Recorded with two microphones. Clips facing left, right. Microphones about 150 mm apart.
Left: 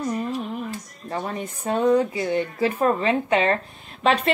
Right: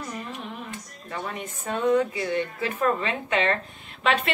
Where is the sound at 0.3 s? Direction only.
35° left (ahead or behind).